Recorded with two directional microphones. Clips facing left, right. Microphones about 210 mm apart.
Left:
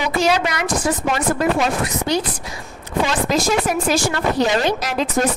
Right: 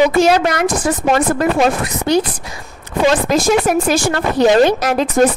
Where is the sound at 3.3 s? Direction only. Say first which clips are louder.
Right 5 dB; 55° right (ahead or behind).